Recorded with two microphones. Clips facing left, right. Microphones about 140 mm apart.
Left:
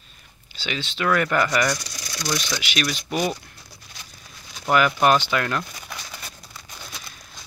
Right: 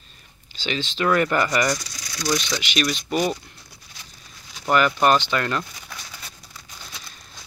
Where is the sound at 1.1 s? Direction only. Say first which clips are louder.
Even; centre (ahead or behind).